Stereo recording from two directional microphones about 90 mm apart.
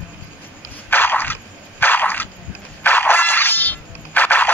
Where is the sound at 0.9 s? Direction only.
20° left (ahead or behind).